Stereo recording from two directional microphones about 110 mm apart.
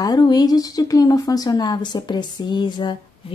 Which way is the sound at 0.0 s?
35° left (ahead or behind).